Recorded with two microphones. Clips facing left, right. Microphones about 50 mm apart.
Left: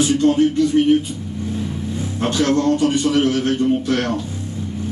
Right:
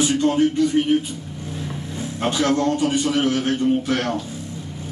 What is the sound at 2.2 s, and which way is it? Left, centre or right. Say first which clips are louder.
A man's voice: left 2 dB; centre.